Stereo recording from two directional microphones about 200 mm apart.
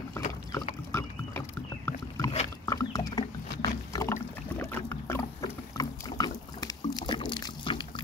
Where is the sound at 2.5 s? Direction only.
15° left (ahead or behind).